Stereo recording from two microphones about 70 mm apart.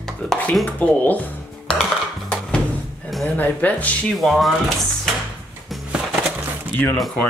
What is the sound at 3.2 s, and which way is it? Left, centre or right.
Speech, left.